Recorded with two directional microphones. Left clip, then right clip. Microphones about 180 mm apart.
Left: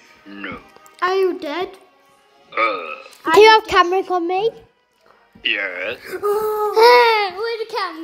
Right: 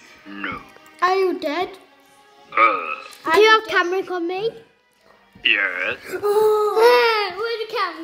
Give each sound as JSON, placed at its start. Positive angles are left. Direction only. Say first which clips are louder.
{"t": 0.3, "sound": "speech", "louder": "right 2 dB", "side_deg": 0}
{"t": 0.9, "sound": "music", "louder": "even", "side_deg": 35}
{"t": 2.5, "sound": "speech", "louder": "right 3 dB", "side_deg": 0}
{"t": 3.3, "sound": "a child's voice", "louder": "left 4 dB", "side_deg": 20}
{"t": 5.4, "sound": "speech", "louder": "right 2 dB", "side_deg": 0}
{"t": 6.0, "sound": "a sound", "louder": "right 3 dB", "side_deg": 40}